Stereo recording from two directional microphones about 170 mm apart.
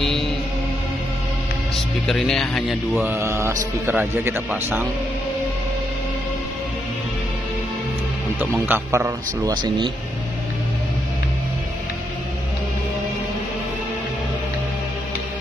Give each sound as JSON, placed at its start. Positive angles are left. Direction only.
{"t": 0.0, "sound": "music", "side_deg": 0}
{"t": 2.0, "sound": "speech", "side_deg": 0}
{"t": 3.1, "sound": "a man's voice", "side_deg": -15}
{"t": 8.4, "sound": "a man's voice", "side_deg": -15}